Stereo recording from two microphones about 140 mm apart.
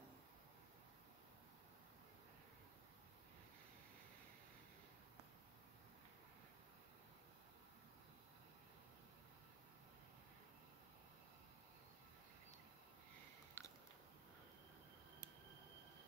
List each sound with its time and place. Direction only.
13.6 s biting: 15° left (ahead or behind)